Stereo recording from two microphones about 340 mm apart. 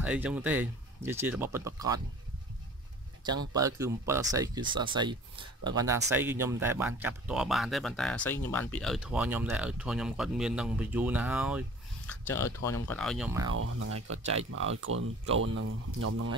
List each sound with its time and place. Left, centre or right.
0.0 s speech: centre
3.3 s speech: centre
12.1 s speech: centre
13.5 s speech: right